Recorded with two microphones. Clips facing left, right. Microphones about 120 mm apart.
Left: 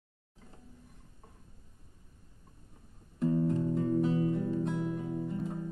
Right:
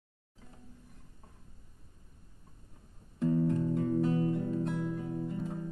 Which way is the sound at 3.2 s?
15° left (ahead or behind).